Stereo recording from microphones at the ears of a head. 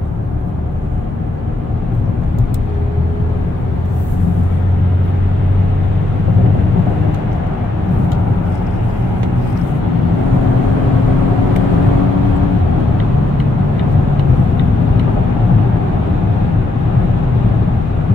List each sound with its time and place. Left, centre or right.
11.0 s vehicle: left
14.6 s vehicle: left